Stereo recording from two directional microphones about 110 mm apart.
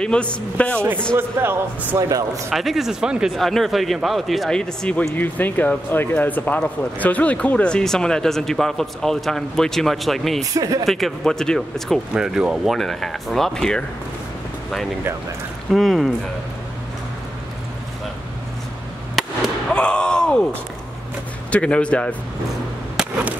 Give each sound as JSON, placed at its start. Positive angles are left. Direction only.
{"t": 0.0, "sound": "speech", "side_deg": 10}
{"t": 0.7, "sound": "a man's voice", "side_deg": -20}
{"t": 2.5, "sound": "speech", "side_deg": 0}
{"t": 10.4, "sound": "speech", "side_deg": -30}
{"t": 10.9, "sound": "speech", "side_deg": 0}
{"t": 12.1, "sound": "speech", "side_deg": -5}
{"t": 15.7, "sound": "speech", "side_deg": 0}
{"t": 19.2, "sound": "fireworks", "side_deg": 0}
{"t": 19.7, "sound": "a sound", "side_deg": 10}
{"t": 21.5, "sound": "speech", "side_deg": 10}